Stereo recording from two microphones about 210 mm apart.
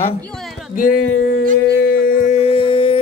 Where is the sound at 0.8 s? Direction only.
40° left (ahead or behind).